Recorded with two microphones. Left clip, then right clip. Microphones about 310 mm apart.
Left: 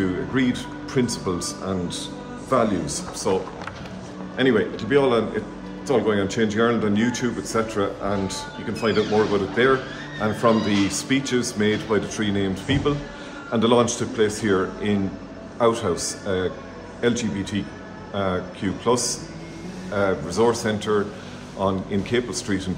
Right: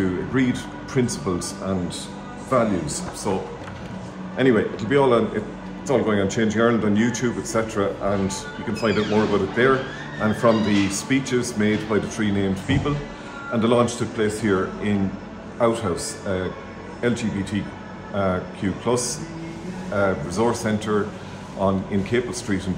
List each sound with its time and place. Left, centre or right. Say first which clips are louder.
0.3 s speech: even; centre
3.3 s speech: left 3 dB; centre